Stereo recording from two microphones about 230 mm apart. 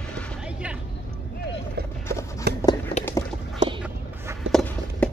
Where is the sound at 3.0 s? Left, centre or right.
Left.